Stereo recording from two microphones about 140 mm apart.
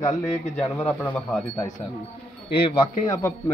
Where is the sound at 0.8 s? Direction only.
10° left (ahead or behind).